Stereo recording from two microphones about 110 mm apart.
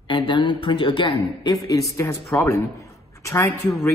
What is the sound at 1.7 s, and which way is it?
A man's voice, 30° left (ahead or behind).